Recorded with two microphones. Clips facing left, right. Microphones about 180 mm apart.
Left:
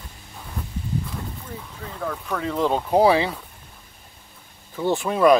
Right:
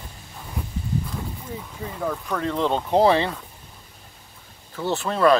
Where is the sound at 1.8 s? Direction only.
10° right (ahead or behind).